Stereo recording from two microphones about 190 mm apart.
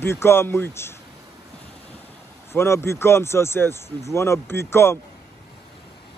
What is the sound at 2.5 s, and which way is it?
Speech, 15° left (ahead or behind).